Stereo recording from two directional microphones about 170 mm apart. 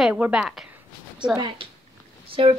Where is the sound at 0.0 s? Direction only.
5° right (ahead or behind).